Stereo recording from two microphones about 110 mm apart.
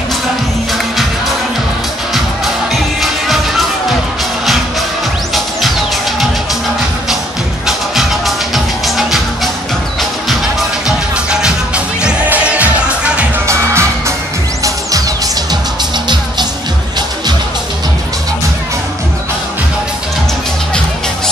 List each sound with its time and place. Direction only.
2.1 s music: centre (ahead or behind)
5.3 s music: centre (ahead or behind)
7.6 s music: centre (ahead or behind)
11.2 s music: 10° right (ahead or behind)
13.5 s music: 25° right (ahead or behind)